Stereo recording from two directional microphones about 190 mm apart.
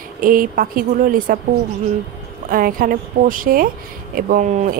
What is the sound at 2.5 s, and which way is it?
A woman's voice, 50° right (ahead or behind).